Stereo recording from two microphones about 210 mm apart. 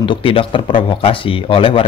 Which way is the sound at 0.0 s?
25° left (ahead or behind).